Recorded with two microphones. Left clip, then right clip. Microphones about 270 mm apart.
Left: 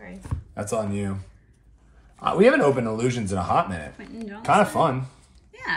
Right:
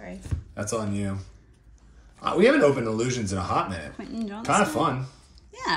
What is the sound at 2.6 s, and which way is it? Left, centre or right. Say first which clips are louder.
A man's voice: even; left.